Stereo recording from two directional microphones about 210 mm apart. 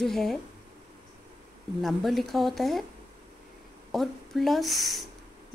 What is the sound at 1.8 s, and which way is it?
Speech, centre (ahead or behind).